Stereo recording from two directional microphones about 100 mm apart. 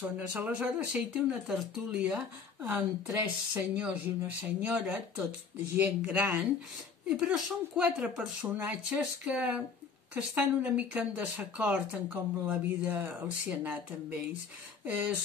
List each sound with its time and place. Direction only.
0.3 s speech: 15° right (ahead or behind)
3.1 s speech: 25° right (ahead or behind)
3.7 s speech: 15° right (ahead or behind)